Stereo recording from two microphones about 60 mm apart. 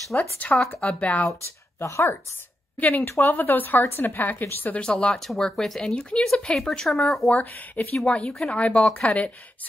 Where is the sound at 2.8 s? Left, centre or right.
Left.